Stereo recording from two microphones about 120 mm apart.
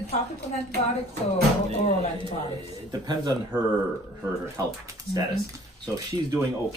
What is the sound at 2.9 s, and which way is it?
A man's voice, 35° right (ahead or behind).